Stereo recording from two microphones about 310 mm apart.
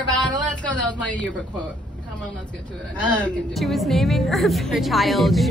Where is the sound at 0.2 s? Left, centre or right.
Centre.